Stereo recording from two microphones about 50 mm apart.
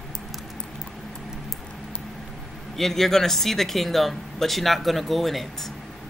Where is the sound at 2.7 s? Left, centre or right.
Centre.